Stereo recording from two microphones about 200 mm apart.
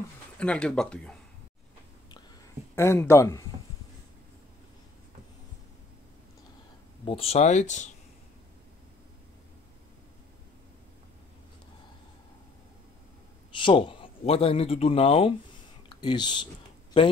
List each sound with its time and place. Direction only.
0.4 s speech: 5° left (ahead or behind)
2.7 s speech: 15° left (ahead or behind)
7.1 s speech: 30° left (ahead or behind)
13.6 s speech: 25° left (ahead or behind)